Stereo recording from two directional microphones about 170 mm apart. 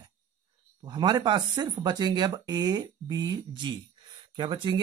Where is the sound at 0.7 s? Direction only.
25° right (ahead or behind).